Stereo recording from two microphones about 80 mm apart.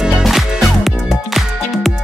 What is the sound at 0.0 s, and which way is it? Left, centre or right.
Music, centre.